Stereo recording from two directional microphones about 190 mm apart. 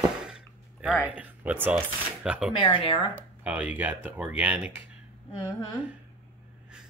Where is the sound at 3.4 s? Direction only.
10° right (ahead or behind).